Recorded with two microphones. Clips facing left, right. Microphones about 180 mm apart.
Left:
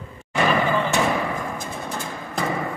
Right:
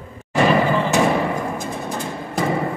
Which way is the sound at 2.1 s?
30° right (ahead or behind).